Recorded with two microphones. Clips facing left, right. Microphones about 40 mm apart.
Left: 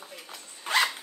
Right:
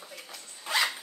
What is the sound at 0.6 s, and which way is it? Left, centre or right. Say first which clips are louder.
Zipper: left 3 dB; left.